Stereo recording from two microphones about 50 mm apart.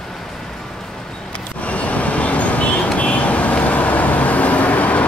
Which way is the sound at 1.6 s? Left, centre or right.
Left.